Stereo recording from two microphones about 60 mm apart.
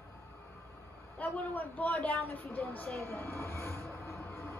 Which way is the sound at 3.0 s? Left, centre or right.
Left.